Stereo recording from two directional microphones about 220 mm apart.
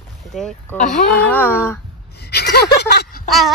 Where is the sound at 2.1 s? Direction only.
50° left (ahead or behind).